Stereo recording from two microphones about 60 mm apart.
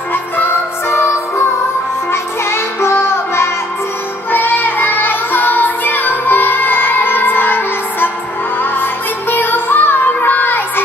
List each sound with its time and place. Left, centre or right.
0.1 s music: left
4.3 s music: left